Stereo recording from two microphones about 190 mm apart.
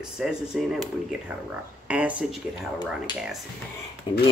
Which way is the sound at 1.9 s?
5° right (ahead or behind).